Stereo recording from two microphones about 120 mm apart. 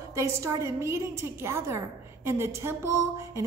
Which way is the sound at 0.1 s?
25° right (ahead or behind).